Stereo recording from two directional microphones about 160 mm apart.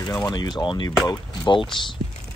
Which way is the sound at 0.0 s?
25° left (ahead or behind).